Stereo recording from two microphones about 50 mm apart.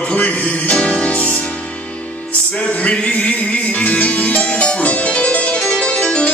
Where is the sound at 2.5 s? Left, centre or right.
Left.